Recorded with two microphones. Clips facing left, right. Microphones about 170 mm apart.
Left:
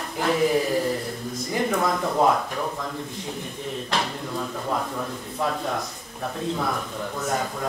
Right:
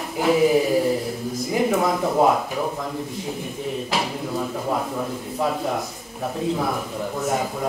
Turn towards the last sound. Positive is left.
turn(degrees=-5)  # may be behind; listen again after turning